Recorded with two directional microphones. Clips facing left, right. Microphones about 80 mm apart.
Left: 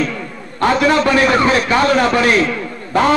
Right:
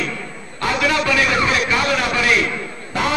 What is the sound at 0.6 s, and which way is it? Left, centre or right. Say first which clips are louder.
A man's voice: left 6 dB; left.